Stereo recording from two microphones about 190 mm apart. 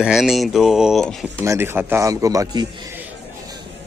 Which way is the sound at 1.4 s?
15° right (ahead or behind).